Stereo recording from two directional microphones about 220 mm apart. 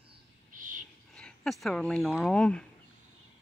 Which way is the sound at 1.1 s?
5° left (ahead or behind).